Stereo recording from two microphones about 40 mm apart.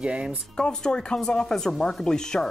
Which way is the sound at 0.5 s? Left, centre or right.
Centre.